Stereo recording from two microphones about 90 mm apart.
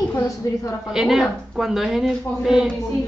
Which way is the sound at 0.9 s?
5° right (ahead or behind).